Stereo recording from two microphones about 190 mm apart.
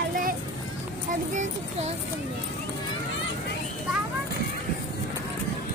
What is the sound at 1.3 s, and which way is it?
Speech, 40° right (ahead or behind).